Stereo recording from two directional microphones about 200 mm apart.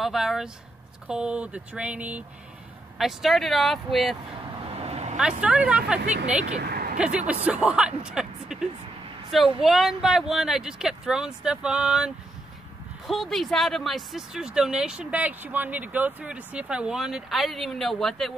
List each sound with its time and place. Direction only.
0.0 s speech: centre (ahead or behind)
4.6 s vehicle: 30° right (ahead or behind)
5.4 s speech: 5° right (ahead or behind)
6.6 s vehicle: 50° right (ahead or behind)
7.0 s speech: 5° right (ahead or behind)